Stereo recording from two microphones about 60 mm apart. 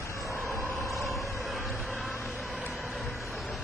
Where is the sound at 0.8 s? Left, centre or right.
Centre.